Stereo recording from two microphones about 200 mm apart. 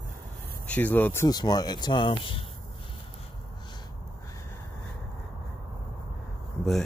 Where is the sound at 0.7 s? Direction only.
10° left (ahead or behind); by 2.4 s 25° left (ahead or behind).